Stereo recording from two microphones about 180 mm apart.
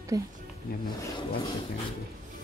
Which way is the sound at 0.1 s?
20° right (ahead or behind).